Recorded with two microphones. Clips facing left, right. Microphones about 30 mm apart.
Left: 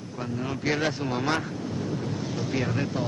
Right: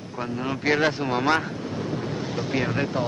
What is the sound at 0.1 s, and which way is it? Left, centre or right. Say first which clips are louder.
Speech: right 3 dB; right.